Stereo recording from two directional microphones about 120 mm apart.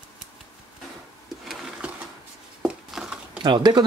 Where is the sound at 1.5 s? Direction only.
5° right (ahead or behind).